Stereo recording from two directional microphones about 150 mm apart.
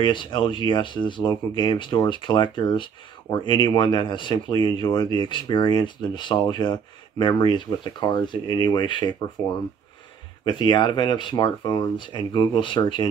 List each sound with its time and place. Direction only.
0.0 s speech: 30° left (ahead or behind)
10.4 s speech: 30° left (ahead or behind)